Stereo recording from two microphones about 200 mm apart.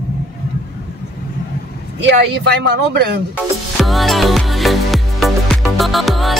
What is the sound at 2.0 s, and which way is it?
Speech, 60° right (ahead or behind).